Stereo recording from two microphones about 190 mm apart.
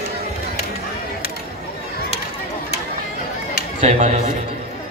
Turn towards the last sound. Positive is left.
turn(degrees=-35)  # may be behind; listen again after turning